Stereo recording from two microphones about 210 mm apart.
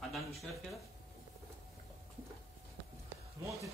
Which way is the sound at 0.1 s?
Centre (ahead or behind).